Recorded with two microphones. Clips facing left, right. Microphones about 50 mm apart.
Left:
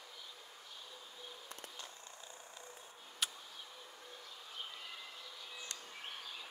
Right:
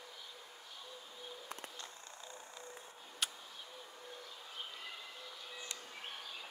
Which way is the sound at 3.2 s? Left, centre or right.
Centre.